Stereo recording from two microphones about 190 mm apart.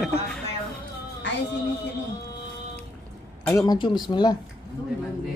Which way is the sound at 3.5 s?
15° left (ahead or behind).